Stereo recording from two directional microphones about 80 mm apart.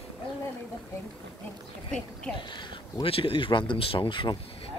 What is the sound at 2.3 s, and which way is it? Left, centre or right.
Speech, left.